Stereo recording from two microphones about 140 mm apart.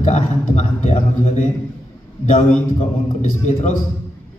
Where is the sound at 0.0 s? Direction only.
60° left (ahead or behind).